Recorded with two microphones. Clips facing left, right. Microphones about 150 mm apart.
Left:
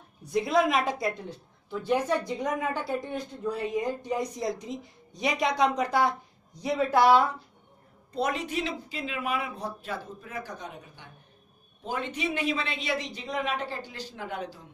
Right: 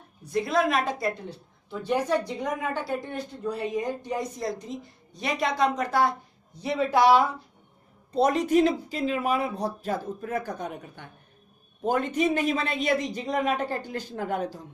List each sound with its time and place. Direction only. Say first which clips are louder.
0.2 s speech: even; centre (ahead or behind)
8.1 s speech: right 8 dB; 35° right (ahead or behind)